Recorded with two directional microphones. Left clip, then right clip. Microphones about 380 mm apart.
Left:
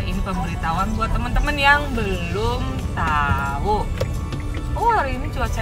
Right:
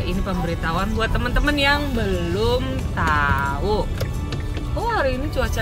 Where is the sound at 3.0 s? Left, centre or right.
Left.